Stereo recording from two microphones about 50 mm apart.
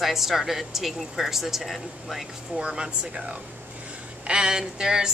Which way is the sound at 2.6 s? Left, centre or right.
Centre.